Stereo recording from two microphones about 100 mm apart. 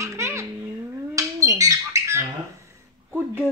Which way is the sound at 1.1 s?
35° right (ahead or behind).